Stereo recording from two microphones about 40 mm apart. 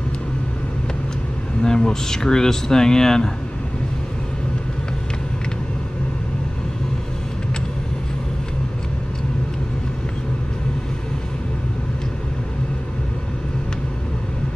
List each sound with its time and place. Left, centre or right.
1.6 s speech: centre